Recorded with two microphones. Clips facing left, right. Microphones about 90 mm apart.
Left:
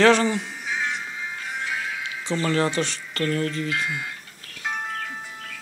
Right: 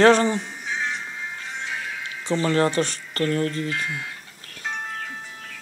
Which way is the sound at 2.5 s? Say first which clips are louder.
Right 2 dB; 40° right (ahead or behind).